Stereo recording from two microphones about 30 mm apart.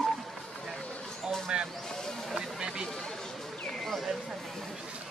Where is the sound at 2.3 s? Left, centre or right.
Right.